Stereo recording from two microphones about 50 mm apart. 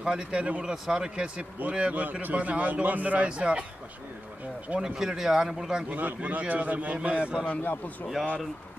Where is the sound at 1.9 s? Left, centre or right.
Right.